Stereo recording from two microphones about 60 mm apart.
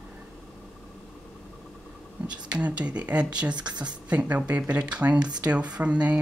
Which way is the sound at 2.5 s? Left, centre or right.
Centre.